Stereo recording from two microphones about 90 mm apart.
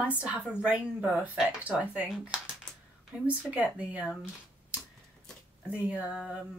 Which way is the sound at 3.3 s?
15° right (ahead or behind).